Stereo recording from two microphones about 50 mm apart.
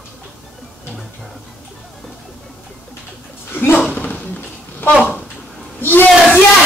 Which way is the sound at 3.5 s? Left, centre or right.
Left.